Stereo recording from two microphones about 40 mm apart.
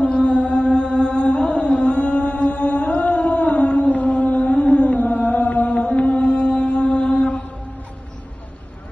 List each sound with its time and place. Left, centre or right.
0.0 s chant: left
3.9 s music: left
5.0 s chant: left